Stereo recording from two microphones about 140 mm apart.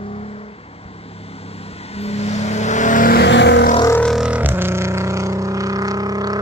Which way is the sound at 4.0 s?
Centre (ahead or behind).